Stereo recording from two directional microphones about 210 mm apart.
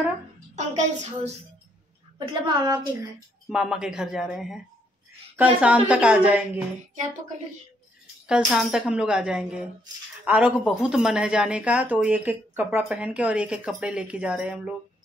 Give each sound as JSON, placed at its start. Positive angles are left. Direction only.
{"t": 0.6, "sound": "child singing", "side_deg": -35}
{"t": 2.1, "sound": "a woman's voice", "side_deg": -15}
{"t": 3.4, "sound": "a woman's voice", "side_deg": -5}
{"t": 8.3, "sound": "speech", "side_deg": 0}